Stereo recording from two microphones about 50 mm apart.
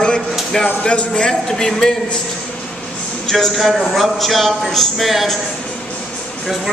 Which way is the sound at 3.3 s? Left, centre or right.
Centre.